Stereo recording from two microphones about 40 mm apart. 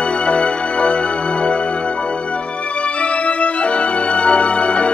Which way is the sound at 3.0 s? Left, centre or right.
Left.